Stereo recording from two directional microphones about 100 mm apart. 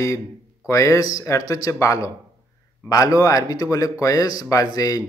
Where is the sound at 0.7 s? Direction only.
35° left (ahead or behind).